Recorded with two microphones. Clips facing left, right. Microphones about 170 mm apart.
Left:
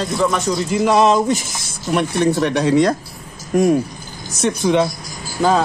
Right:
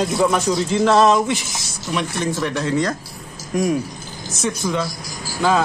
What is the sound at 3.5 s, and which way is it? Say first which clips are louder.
Speech: left 5 dB; 50° left (ahead or behind).